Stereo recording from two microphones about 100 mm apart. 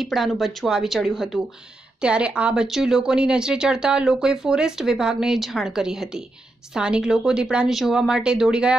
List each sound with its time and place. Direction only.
0.0 s speech: centre (ahead or behind)